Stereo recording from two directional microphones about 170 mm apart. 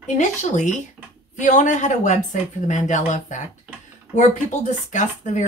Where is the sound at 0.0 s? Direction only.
45° left (ahead or behind).